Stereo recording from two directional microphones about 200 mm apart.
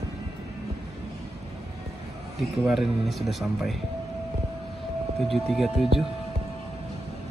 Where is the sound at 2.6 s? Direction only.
Centre (ahead or behind).